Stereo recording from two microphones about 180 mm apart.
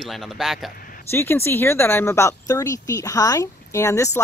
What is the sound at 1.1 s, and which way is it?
Speech, 15° left (ahead or behind).